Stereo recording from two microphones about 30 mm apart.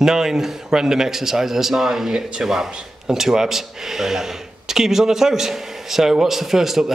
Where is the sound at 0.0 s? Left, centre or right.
Centre.